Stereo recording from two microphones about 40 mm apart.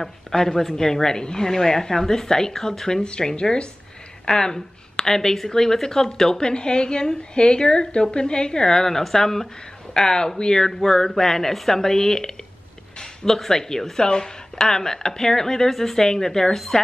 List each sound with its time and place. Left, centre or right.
0.0 s a woman's voice: centre